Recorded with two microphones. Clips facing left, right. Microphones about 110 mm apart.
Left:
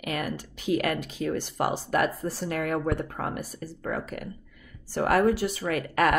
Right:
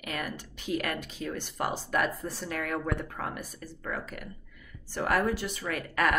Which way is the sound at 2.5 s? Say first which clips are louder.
Left 5 dB; 50° left (ahead or behind).